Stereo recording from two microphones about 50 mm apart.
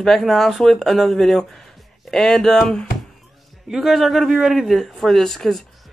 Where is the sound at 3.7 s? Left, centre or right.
Centre.